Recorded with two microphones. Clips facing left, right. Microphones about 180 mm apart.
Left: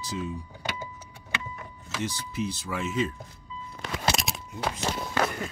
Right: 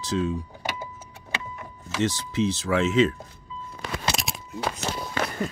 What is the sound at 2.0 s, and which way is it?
Speech, 80° right.